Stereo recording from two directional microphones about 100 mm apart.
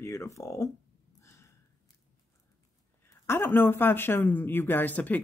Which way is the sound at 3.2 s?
25° left (ahead or behind).